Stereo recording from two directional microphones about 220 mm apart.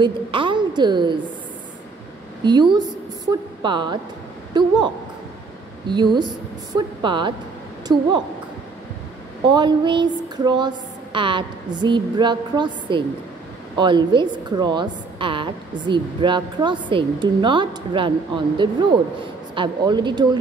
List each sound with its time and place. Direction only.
0.0 s a woman's voice: 20° right (ahead or behind)
2.4 s a woman's voice: 20° right (ahead or behind)
9.5 s a woman's voice: 20° right (ahead or behind)